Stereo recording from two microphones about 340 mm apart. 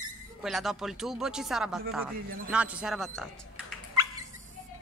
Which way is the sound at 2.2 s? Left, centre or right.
Right.